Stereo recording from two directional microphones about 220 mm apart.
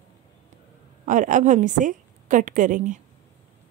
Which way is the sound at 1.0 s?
35° right (ahead or behind).